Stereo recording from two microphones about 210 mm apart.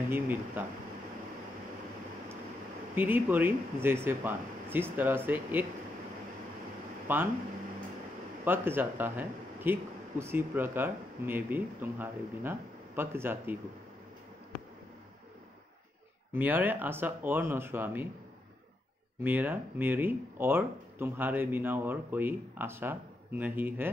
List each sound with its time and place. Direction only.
0.1 s speech: 10° right (ahead or behind)
3.0 s speech: 10° right (ahead or behind)
7.1 s speech: 10° right (ahead or behind)
8.5 s speech: 10° right (ahead or behind)
16.3 s speech: 10° right (ahead or behind)
19.2 s speech: 10° right (ahead or behind)